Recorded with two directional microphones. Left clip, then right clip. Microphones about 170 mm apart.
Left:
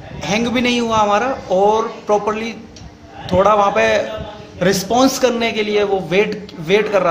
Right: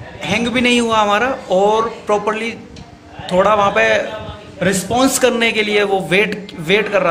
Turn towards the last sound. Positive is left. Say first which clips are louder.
# even
turn(degrees=0)  # may be behind; listen again after turning